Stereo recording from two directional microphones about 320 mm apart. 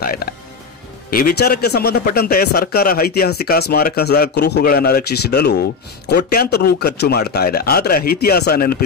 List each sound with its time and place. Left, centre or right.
0.0 s music: left
1.1 s a man's voice: left